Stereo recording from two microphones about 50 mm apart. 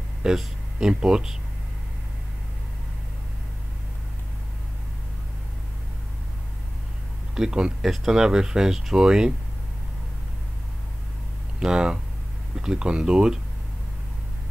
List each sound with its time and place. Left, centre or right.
0.2 s speech: centre
7.3 s speech: centre
11.6 s speech: centre